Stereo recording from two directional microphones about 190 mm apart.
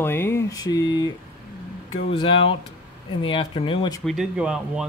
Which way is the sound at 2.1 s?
25° left (ahead or behind).